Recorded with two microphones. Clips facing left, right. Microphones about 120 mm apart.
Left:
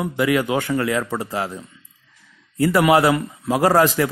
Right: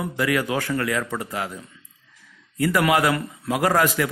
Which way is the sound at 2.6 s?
30° left (ahead or behind).